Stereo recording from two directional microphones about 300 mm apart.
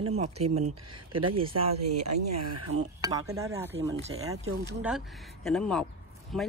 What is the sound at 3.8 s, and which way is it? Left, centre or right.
Speech, centre.